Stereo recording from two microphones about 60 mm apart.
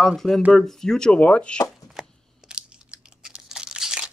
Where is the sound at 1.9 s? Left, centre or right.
Centre.